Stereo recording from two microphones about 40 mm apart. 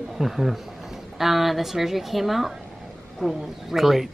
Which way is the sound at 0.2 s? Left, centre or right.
Centre.